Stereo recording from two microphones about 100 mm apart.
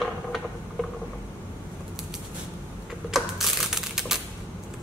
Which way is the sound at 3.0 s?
5° right (ahead or behind).